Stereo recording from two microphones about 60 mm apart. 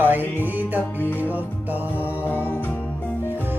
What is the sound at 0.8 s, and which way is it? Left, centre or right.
Music, left.